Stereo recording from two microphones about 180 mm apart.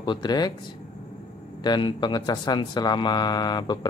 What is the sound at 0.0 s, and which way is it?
Speech, 25° left (ahead or behind).